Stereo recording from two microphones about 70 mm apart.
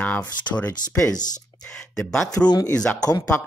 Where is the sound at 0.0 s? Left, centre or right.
Left.